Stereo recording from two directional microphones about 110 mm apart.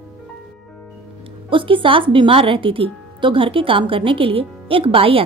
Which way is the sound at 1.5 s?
50° right (ahead or behind).